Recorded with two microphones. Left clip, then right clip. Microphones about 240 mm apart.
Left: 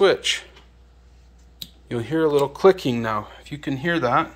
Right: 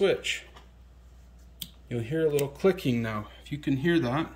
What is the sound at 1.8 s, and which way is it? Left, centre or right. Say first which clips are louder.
A man's voice: left 6 dB; centre.